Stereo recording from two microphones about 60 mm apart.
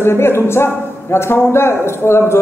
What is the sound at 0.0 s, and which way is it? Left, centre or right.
A woman's voice, left.